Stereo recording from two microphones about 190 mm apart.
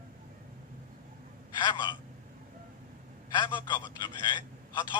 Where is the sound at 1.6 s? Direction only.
25° left (ahead or behind).